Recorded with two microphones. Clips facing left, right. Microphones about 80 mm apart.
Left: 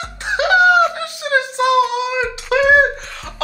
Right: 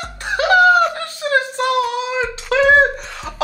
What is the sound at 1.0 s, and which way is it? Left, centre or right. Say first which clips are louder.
Child singing: even; centre.